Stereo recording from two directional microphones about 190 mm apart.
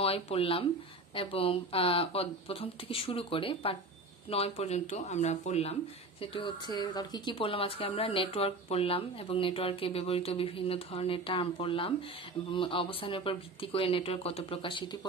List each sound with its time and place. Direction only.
0.0 s speech: 30° left (ahead or behind)
6.3 s speech: 25° left (ahead or behind)